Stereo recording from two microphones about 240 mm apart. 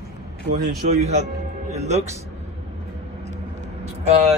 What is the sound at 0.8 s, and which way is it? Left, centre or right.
A man's voice, right.